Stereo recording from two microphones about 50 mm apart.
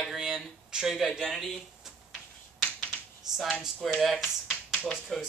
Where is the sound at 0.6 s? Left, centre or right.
Centre.